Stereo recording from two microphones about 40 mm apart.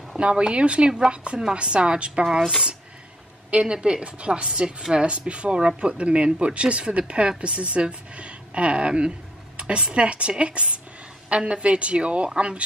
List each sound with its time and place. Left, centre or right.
0.2 s speech: right
3.6 s a woman's voice: right